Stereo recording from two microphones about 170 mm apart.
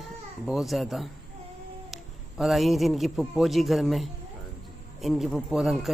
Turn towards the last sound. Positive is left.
turn(degrees=0)  # may be behind; listen again after turning